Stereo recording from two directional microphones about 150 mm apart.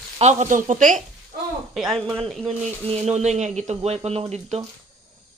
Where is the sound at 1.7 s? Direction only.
Centre (ahead or behind).